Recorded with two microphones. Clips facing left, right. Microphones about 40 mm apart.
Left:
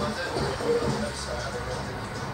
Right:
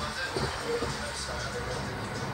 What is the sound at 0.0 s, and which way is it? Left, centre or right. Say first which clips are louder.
Music: left 4 dB; right.